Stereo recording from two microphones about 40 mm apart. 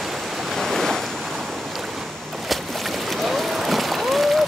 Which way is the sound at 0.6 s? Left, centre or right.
Centre.